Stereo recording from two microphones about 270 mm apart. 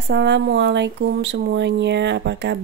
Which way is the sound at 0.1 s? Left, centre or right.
Right.